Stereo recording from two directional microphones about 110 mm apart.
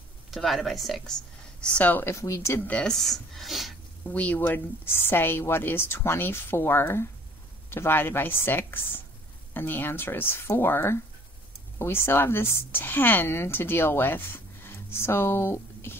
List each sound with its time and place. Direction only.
0.3 s a woman's voice: centre (ahead or behind)
1.6 s speech: 10° left (ahead or behind)
4.1 s speech: 15° left (ahead or behind)